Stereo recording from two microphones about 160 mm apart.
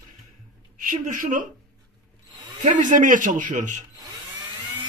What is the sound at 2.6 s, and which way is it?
Speech, 50° right (ahead or behind).